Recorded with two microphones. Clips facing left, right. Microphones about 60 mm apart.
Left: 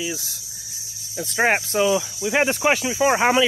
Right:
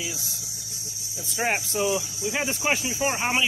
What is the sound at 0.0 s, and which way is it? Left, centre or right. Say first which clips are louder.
Speech: left 6 dB; left.